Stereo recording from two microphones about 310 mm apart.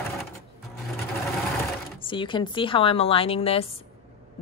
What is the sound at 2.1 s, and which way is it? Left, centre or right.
A woman's voice, centre.